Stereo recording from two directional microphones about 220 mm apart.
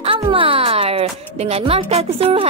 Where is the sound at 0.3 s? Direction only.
25° right (ahead or behind).